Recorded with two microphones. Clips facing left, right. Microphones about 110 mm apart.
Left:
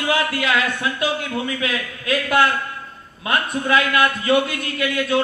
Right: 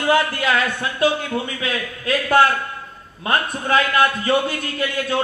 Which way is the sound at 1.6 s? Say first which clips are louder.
Even; 35° right (ahead or behind).